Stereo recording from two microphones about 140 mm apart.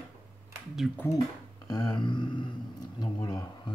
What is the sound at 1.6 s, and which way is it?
Speech, 30° left (ahead or behind).